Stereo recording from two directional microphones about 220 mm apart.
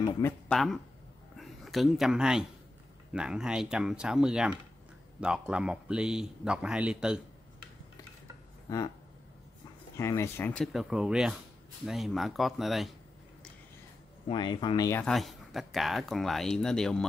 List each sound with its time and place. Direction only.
0.5 s speech: centre (ahead or behind)
8.6 s speech: 15° left (ahead or behind)
9.9 s speech: 10° left (ahead or behind)
14.3 s speech: 20° left (ahead or behind)
15.1 s speech: centre (ahead or behind)